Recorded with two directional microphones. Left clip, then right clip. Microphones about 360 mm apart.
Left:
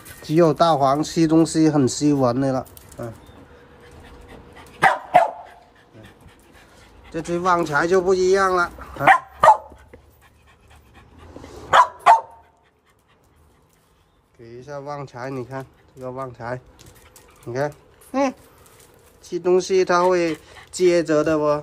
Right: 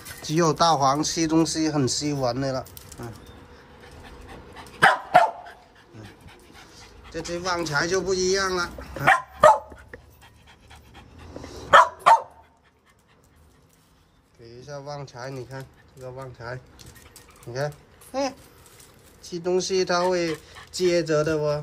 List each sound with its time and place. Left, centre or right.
0.2 s speech: centre
4.3 s dog: right
7.1 s speech: centre
11.7 s dog: centre
14.5 s a sound: centre
16.3 s speech: centre
19.2 s speech: centre